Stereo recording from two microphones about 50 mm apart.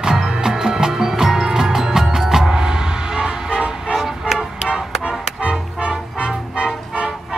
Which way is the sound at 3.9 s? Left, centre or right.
Centre.